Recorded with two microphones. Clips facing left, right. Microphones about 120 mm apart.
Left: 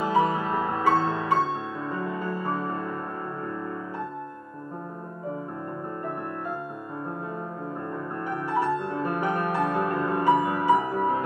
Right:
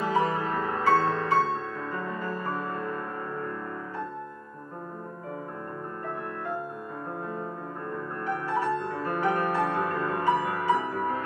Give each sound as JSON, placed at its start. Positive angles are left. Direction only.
{"t": 0.0, "sound": "music", "side_deg": 15}
{"t": 8.8, "sound": "music", "side_deg": 15}